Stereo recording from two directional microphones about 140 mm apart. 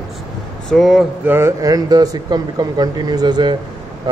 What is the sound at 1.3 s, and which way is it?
A man's voice, 20° right (ahead or behind).